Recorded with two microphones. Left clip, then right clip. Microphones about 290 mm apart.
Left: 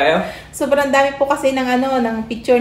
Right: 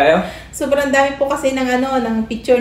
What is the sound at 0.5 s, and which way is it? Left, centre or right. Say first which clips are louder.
A woman's voice: even; centre.